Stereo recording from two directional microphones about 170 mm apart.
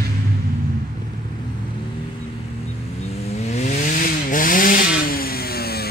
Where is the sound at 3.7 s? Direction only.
55° left (ahead or behind).